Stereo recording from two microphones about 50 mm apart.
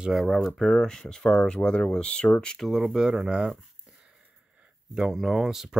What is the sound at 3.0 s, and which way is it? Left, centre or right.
Speech, centre.